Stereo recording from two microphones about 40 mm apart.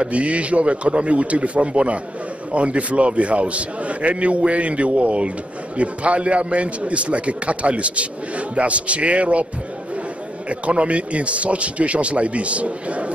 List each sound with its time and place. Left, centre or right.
0.0 s a man's voice: right
10.5 s a man's voice: right